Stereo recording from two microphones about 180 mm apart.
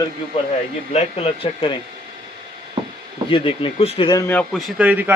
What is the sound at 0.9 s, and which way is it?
Speech, 30° left (ahead or behind).